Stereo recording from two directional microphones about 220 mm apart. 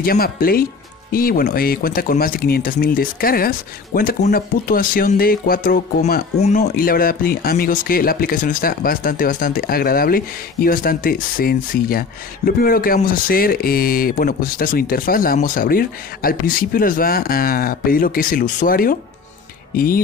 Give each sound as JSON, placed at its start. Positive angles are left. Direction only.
{"t": 0.0, "sound": "speech", "side_deg": 40}